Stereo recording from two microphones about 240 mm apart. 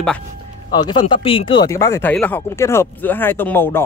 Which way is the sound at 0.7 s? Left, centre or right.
Centre.